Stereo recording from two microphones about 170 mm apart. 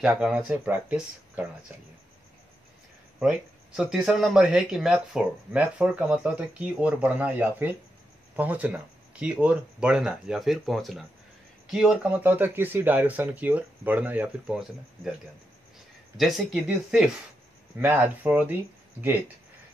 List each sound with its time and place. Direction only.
0.0 s speech: 5° right (ahead or behind)
3.2 s speech: 5° right (ahead or behind)
16.2 s speech: centre (ahead or behind)